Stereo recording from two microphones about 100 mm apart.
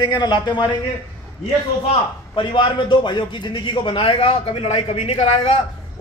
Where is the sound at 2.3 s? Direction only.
50° left (ahead or behind).